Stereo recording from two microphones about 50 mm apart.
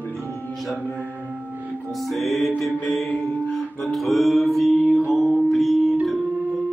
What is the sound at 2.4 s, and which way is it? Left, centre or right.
Mantra, centre.